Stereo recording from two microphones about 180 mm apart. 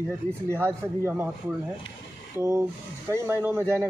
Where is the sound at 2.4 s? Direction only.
15° right (ahead or behind).